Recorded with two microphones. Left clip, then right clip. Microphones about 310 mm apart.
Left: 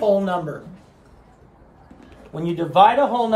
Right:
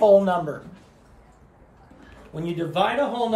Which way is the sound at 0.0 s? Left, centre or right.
Centre.